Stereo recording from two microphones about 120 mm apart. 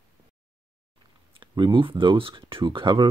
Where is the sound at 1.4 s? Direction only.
40° right (ahead or behind).